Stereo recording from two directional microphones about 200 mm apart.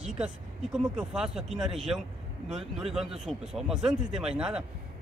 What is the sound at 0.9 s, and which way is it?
Speech, 5° right (ahead or behind).